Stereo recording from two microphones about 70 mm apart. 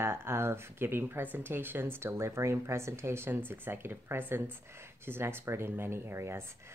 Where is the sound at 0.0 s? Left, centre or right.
Right.